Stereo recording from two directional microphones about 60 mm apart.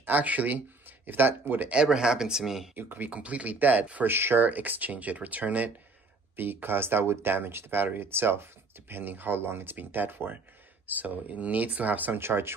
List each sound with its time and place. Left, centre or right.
0.0 s speech: right
1.7 s speech: centre
2.7 s speech: right